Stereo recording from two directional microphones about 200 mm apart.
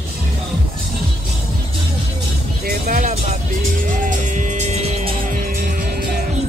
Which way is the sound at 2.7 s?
40° right (ahead or behind).